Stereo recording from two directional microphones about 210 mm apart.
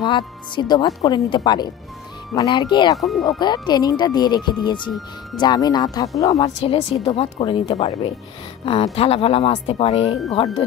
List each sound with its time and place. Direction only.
0.0 s speech: 20° left (ahead or behind)
3.0 s speech: centre (ahead or behind)
3.3 s speech: 20° left (ahead or behind)